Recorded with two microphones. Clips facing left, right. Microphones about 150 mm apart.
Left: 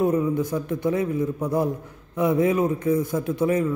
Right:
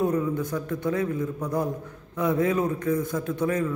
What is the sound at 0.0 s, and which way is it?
A man's voice, 20° left (ahead or behind).